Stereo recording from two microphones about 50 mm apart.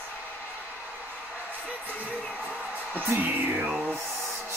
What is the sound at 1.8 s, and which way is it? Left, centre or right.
Music, right.